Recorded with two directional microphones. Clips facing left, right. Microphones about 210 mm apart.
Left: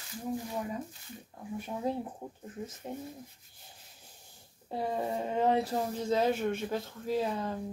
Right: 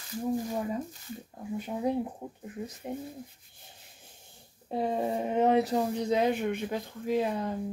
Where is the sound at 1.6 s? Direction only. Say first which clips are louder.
Right 4 dB; 15° right (ahead or behind).